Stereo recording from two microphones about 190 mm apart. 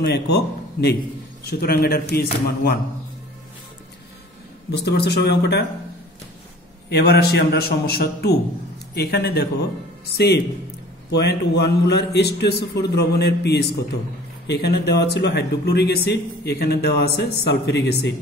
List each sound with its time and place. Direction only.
0.0 s a man's voice: 60° left (ahead or behind)
4.6 s speech: 60° left (ahead or behind)
6.9 s speech: 55° left (ahead or behind)